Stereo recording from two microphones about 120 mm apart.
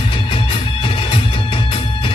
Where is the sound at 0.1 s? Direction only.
45° left (ahead or behind).